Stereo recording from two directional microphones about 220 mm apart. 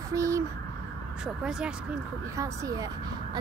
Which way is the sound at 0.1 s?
15° right (ahead or behind).